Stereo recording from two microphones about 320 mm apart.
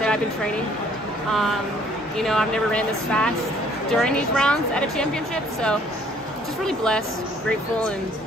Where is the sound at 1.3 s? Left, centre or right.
Centre.